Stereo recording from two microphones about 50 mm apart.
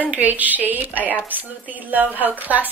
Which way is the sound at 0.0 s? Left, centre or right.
Right.